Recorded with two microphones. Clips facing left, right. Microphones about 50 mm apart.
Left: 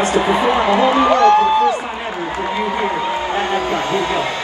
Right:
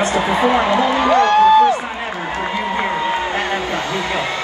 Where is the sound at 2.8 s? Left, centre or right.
Right.